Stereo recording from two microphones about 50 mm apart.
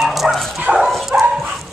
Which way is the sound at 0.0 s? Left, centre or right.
Centre.